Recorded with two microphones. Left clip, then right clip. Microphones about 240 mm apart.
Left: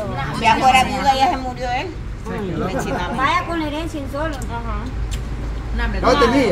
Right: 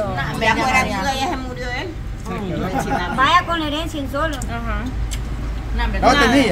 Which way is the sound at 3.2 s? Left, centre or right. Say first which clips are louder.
Right 4 dB; right.